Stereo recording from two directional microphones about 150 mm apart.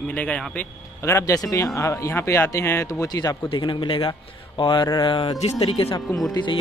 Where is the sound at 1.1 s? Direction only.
20° left (ahead or behind).